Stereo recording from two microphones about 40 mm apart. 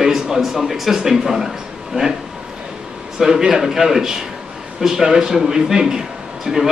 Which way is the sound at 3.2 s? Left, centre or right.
Centre.